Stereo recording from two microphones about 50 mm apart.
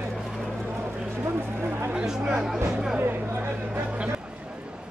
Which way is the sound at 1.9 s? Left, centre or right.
Centre.